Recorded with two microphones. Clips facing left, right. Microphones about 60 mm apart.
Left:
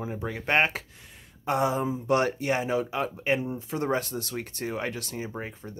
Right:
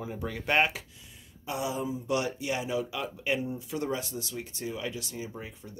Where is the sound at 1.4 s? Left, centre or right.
Left.